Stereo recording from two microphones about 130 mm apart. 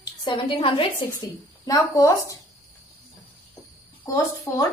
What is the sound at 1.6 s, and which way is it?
Speech, 25° left (ahead or behind).